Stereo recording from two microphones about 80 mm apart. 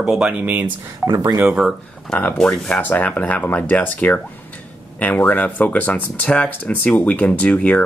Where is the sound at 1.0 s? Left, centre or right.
Centre.